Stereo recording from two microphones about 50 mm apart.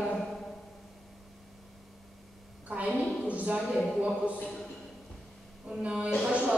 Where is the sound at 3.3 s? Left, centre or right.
Right.